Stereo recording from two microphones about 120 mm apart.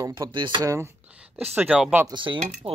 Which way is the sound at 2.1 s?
45° right (ahead or behind).